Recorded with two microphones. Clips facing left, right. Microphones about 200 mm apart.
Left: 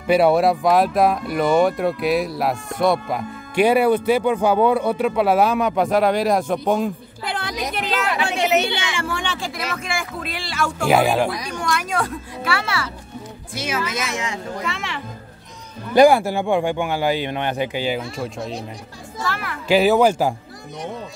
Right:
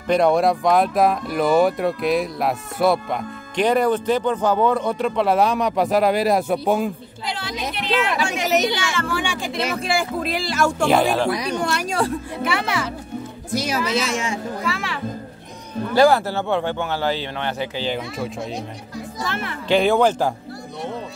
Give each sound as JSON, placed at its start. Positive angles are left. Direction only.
{"t": 0.0, "sound": "speech", "side_deg": 5}
{"t": 7.2, "sound": "a woman's voice", "side_deg": 55}
{"t": 9.0, "sound": "speech", "side_deg": -5}
{"t": 9.5, "sound": "speech", "side_deg": -30}
{"t": 10.8, "sound": "speech", "side_deg": 5}
{"t": 11.3, "sound": "speech", "side_deg": -65}
{"t": 11.7, "sound": "speech", "side_deg": -30}
{"t": 12.4, "sound": "speech", "side_deg": -15}
{"t": 13.5, "sound": "speech", "side_deg": -40}
{"t": 14.7, "sound": "speech", "side_deg": 0}
{"t": 15.9, "sound": "speech", "side_deg": 15}
{"t": 18.1, "sound": "speech", "side_deg": 0}
{"t": 19.2, "sound": "speech", "side_deg": -20}
{"t": 19.7, "sound": "speech", "side_deg": 5}